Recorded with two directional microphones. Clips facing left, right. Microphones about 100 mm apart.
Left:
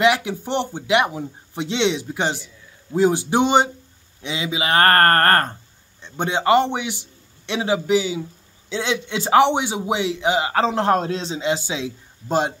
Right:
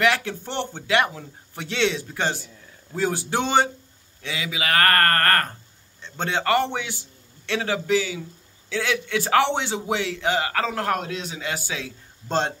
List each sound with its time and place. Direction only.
0.0 s a man's voice: 15° left (ahead or behind)
5.9 s a man's voice: 15° left (ahead or behind)